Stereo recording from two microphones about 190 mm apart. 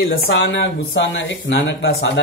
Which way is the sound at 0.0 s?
75° left (ahead or behind).